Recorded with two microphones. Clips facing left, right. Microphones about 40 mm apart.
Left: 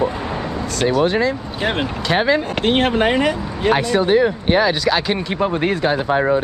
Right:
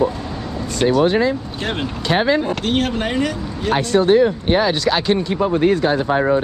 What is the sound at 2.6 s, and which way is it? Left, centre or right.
Speech, left.